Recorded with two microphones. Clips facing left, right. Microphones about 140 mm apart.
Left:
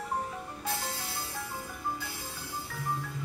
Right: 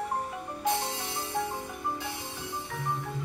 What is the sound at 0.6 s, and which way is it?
Music, 20° right (ahead or behind).